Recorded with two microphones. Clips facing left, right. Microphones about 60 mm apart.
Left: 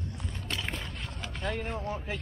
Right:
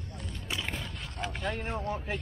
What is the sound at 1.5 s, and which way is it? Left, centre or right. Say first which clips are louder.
Speech: left 2 dB; centre.